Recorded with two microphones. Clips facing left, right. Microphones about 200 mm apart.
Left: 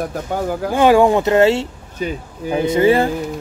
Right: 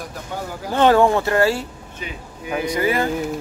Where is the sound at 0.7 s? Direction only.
10° left (ahead or behind); by 3.0 s 25° left (ahead or behind).